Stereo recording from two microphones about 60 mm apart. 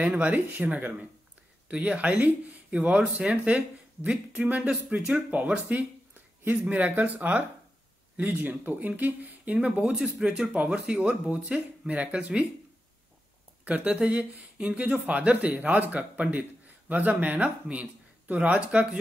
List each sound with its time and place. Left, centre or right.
0.0 s speech: right
4.6 s speech: centre
13.7 s speech: right